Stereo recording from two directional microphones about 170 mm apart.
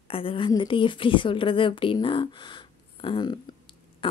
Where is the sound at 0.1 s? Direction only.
30° left (ahead or behind).